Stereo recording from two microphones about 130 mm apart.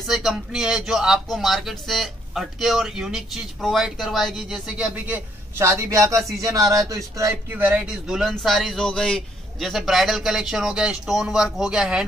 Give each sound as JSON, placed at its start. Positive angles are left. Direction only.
{"t": 0.0, "sound": "speech", "side_deg": 0}
{"t": 5.6, "sound": "speech", "side_deg": -20}
{"t": 7.5, "sound": "speech", "side_deg": -10}